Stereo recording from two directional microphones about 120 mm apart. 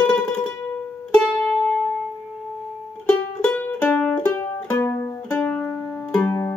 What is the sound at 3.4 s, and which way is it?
Music, 15° left (ahead or behind).